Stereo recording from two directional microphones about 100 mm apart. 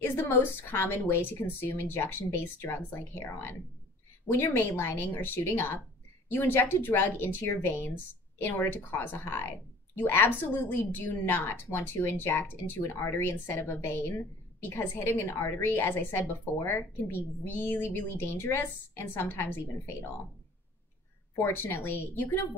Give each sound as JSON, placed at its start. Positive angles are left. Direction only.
{"t": 0.0, "sound": "speech", "side_deg": 20}
{"t": 21.4, "sound": "speech", "side_deg": 25}